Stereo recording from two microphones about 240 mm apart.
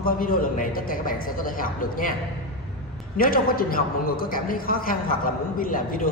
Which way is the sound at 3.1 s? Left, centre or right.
Left.